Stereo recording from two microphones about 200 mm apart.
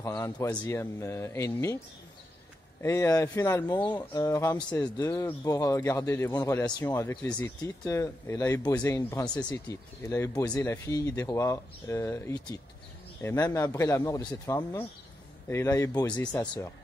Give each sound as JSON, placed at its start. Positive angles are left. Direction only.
{"t": 0.0, "sound": "speech", "side_deg": 15}
{"t": 2.8, "sound": "speech", "side_deg": 15}